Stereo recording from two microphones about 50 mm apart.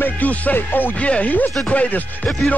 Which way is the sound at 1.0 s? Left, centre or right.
Left.